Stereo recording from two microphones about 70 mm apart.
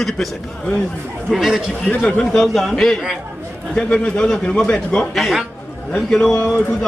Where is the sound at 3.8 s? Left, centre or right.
Centre.